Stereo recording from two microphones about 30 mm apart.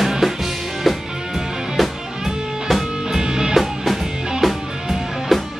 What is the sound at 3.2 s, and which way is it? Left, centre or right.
Music, right.